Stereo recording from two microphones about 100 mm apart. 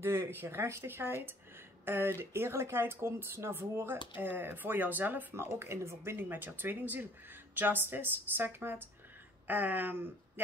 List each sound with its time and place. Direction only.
0.0 s speech: 25° right (ahead or behind)